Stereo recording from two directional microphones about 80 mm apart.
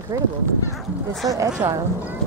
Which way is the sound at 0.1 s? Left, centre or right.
Right.